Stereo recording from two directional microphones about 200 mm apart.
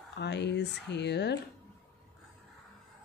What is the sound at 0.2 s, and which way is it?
Speech, 60° left (ahead or behind).